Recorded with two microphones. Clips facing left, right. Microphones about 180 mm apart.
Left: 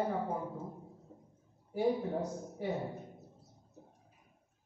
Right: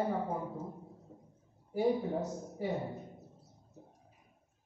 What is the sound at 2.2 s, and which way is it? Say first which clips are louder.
Speech: right 1 dB; 5° right (ahead or behind).